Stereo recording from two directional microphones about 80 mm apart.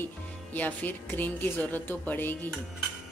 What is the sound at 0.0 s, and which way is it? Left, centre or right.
Speech, left.